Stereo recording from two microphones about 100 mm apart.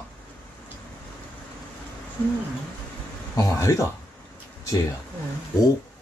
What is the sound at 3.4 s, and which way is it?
Speech, 30° left (ahead or behind).